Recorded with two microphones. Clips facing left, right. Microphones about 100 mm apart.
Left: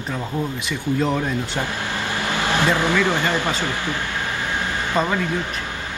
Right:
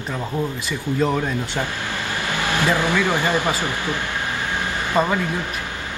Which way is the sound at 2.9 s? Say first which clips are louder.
Even; 15° right (ahead or behind).